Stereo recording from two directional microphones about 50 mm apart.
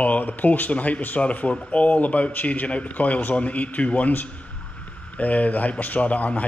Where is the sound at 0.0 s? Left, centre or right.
Left.